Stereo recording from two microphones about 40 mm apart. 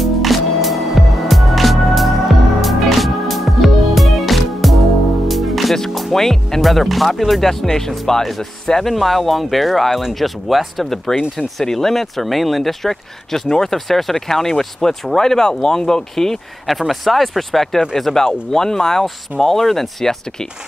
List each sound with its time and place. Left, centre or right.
0.0 s music: centre
6.1 s speech: centre
11.1 s speech: centre
16.6 s speech: centre